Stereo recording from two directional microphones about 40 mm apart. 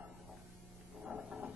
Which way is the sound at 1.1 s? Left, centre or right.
Right.